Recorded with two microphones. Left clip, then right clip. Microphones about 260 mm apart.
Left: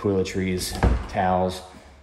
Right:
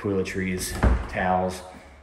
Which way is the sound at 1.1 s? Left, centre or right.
Centre.